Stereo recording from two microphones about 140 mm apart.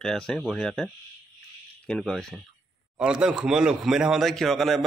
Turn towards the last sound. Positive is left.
turn(degrees=0)  # may be behind; listen again after turning